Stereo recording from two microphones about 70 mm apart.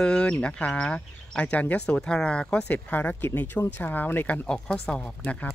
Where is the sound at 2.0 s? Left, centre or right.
Centre.